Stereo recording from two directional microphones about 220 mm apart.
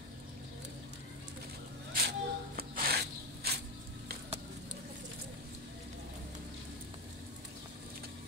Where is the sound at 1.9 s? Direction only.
40° right (ahead or behind).